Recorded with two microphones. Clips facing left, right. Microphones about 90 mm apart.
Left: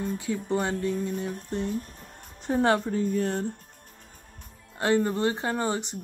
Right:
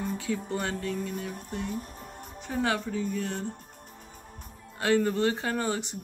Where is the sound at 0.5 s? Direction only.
20° left (ahead or behind).